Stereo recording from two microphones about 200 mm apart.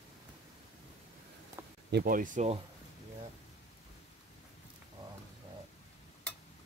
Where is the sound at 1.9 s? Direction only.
45° right (ahead or behind).